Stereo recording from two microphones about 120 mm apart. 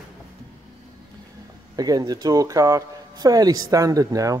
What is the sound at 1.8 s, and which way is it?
Speech, 30° right (ahead or behind).